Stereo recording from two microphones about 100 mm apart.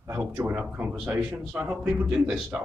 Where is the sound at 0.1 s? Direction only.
25° right (ahead or behind).